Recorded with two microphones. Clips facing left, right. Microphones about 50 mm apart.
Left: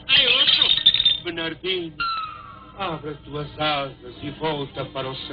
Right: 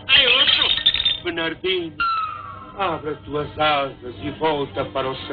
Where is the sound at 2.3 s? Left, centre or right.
Right.